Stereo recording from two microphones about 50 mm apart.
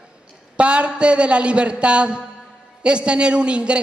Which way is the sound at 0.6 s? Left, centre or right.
Right.